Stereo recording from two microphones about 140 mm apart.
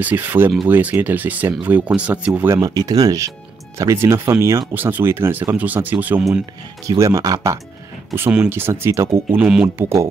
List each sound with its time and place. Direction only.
0.0 s speech: 15° right (ahead or behind)
2.5 s speech: 25° right (ahead or behind)
6.9 s speech: 25° right (ahead or behind)
8.2 s speech: 10° right (ahead or behind)
9.4 s speech: 5° right (ahead or behind)